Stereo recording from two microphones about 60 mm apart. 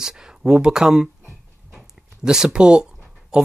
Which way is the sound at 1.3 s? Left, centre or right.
Centre.